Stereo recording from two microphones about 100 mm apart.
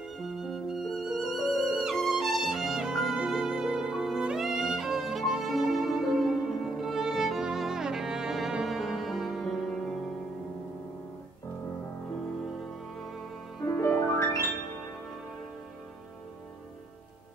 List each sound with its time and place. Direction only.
0.2 s music: 5° right (ahead or behind)
13.7 s music: 30° left (ahead or behind)